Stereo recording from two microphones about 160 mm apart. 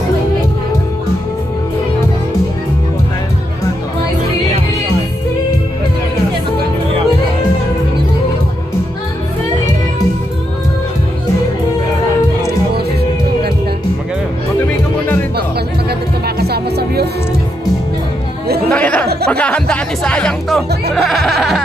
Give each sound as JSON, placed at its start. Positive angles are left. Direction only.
{"t": 16.3, "sound": "music", "side_deg": -85}
{"t": 18.7, "sound": "chatter", "side_deg": 10}
{"t": 19.2, "sound": "music", "side_deg": 5}